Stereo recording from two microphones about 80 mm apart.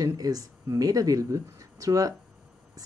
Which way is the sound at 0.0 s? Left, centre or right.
Right.